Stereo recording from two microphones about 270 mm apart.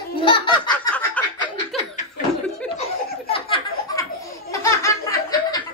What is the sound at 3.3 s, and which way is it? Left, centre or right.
Laughter, centre.